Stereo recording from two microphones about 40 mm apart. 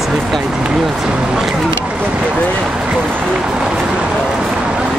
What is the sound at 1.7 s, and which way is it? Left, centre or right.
Vehicle, right.